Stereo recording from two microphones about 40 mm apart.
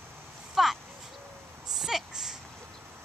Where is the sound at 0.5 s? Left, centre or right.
Centre.